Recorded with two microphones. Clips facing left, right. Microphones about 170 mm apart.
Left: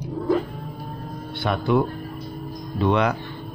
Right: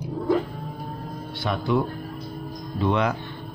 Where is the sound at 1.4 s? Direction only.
60° left (ahead or behind).